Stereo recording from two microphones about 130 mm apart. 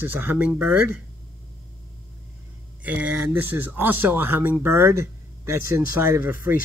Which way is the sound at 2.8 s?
10° right (ahead or behind).